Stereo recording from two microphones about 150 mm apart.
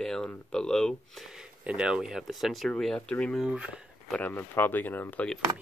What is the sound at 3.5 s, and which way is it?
Speech, 5° right (ahead or behind).